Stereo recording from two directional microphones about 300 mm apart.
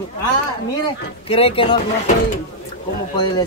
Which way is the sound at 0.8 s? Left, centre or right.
Centre.